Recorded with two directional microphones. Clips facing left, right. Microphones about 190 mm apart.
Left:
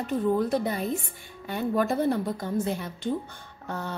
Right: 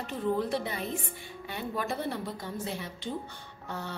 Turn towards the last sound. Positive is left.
turn(degrees=50)  # may be behind; listen again after turning